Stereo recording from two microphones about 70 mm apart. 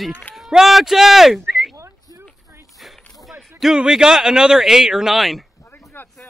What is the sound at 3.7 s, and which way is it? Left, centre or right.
Speech, centre.